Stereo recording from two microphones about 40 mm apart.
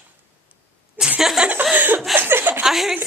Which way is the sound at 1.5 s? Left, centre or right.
Right.